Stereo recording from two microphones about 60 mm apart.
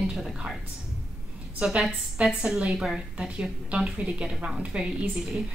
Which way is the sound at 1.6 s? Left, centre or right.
Centre.